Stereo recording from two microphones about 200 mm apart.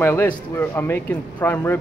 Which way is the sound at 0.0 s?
10° left (ahead or behind).